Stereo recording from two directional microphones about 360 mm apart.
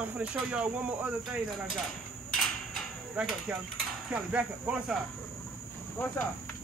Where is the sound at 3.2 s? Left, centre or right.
Centre.